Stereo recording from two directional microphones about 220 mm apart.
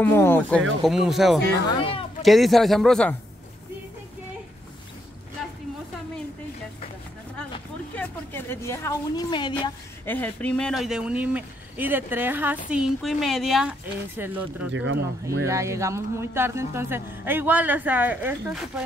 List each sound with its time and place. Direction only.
0.0 s speech: 10° left (ahead or behind)
1.7 s speech: 25° left (ahead or behind)
2.2 s speech: centre (ahead or behind)
7.9 s a woman's voice: 10° left (ahead or behind)
10.0 s speech: 10° left (ahead or behind); by 14.7 s 10° right (ahead or behind)
14.7 s speech: 60° right (ahead or behind)
15.4 s speech: 15° right (ahead or behind)